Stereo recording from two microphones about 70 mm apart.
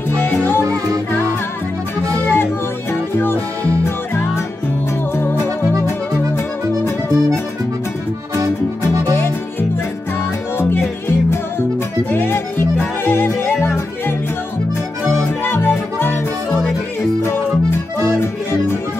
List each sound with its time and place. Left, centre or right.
0.4 s music: left
2.3 s music: left
5.1 s music: left
5.9 s accordion: left
9.1 s music: left
15.4 s music: left
17.2 s music: left